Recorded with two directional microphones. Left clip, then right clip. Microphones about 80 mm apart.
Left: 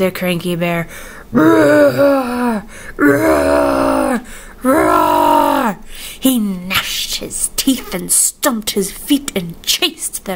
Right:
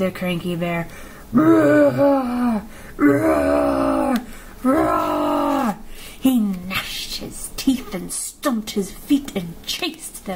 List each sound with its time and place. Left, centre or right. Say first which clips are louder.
0.0 s speech: left 7 dB; left
1.3 s gasp: left 5 dB; left
4.6 s wail: left 7 dB; left
6.2 s speech: left 4 dB; left